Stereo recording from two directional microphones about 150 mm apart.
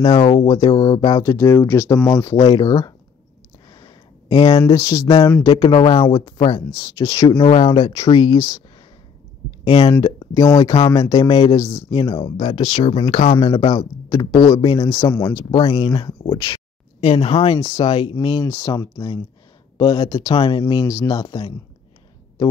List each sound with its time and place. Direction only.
0.0 s speech: 25° left (ahead or behind)
5.5 s speech: 35° left (ahead or behind)
9.8 s speech: 30° left (ahead or behind)
12.6 s speech: 45° left (ahead or behind)
13.3 s speech: 30° left (ahead or behind)
15.5 s speech: 35° left (ahead or behind)